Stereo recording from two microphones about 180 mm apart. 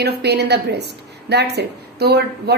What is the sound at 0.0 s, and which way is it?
A woman's voice, 65° right (ahead or behind).